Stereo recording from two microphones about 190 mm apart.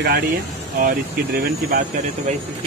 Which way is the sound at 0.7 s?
45° right (ahead or behind).